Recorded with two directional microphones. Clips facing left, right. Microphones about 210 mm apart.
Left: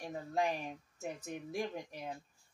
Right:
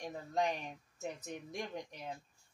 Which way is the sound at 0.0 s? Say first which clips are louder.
Even; 5° left (ahead or behind).